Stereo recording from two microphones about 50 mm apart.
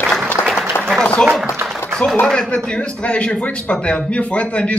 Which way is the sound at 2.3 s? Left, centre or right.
Centre.